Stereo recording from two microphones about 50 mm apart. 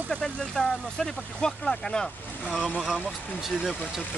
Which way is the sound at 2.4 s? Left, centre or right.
Centre.